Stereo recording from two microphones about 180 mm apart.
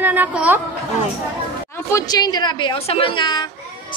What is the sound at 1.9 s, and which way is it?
A woman's voice, 20° left (ahead or behind).